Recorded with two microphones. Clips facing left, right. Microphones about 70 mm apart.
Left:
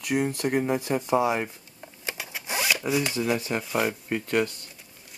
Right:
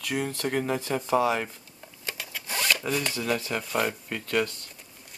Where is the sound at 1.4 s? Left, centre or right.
Centre.